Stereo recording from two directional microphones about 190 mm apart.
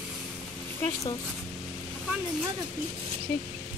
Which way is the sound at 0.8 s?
15° left (ahead or behind).